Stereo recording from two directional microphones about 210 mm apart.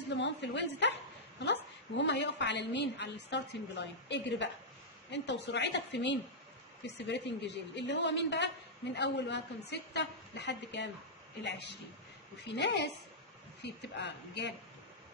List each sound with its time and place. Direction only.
0.1 s a woman's voice: 55° left (ahead or behind)